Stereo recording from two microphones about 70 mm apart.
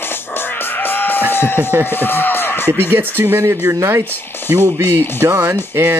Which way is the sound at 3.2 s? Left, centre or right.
Right.